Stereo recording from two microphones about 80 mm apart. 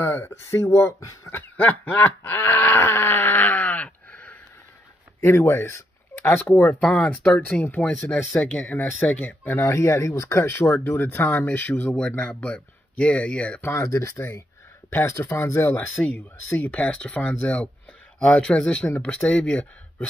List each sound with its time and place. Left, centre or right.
0.0 s speech: left
5.2 s speech: left
6.1 s a sound: left
6.6 s speech: centre
8.5 s speech: centre
9.7 s speech: left; by 13.6 s centre
13.6 s speech: left
16.0 s speech: centre